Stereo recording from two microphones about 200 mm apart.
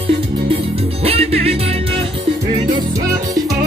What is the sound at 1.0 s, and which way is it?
Music, 30° right (ahead or behind).